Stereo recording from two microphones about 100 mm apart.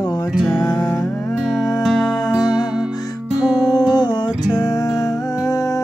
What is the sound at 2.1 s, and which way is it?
Music, 40° left (ahead or behind).